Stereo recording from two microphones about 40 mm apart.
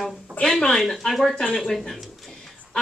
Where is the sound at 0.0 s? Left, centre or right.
Centre.